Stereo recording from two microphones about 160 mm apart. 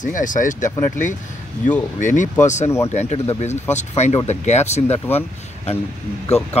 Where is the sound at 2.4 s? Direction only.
45° left (ahead or behind).